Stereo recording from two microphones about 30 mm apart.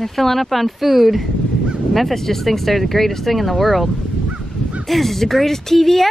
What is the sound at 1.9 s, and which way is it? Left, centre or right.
Speech, centre.